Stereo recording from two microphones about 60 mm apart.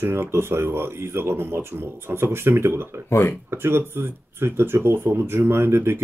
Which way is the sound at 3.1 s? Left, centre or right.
Left.